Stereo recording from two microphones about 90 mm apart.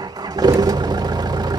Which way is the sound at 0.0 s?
45° right (ahead or behind).